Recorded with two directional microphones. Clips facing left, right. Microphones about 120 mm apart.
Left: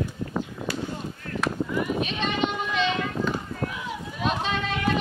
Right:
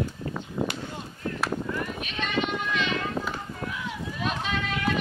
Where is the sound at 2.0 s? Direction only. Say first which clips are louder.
Left 3 dB; 30° left (ahead or behind).